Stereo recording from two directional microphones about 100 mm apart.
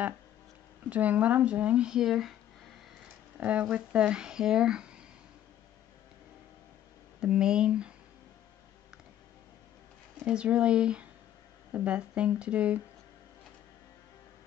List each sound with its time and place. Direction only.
0.8 s speech: 15° right (ahead or behind)
3.3 s speech: 15° right (ahead or behind)
7.2 s speech: 5° right (ahead or behind)
10.2 s speech: 10° right (ahead or behind)